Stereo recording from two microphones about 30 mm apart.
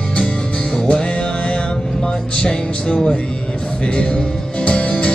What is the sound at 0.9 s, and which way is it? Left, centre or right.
Music, left.